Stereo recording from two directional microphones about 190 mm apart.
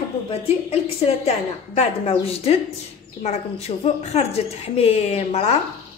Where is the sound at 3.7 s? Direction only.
30° left (ahead or behind).